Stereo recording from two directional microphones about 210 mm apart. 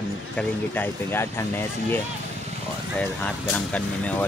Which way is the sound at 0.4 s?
10° left (ahead or behind).